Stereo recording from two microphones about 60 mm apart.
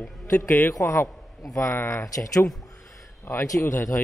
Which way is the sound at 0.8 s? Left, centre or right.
Left.